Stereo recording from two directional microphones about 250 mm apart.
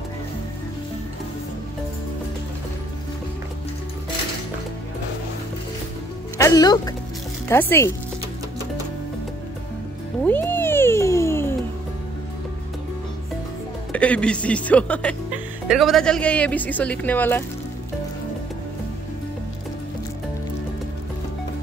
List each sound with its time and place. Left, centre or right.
6.3 s speech: centre
10.2 s music: centre
13.9 s speech: centre